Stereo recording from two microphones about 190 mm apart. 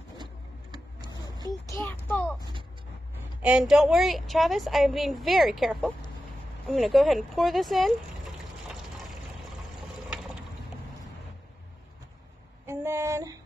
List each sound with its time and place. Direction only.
0.2 s vehicle: 25° right (ahead or behind)
1.7 s a sound: 10° left (ahead or behind)
3.4 s a woman's voice: 5° right (ahead or behind)
10.0 s ratchet: 5° right (ahead or behind)
12.6 s female singing: 15° right (ahead or behind)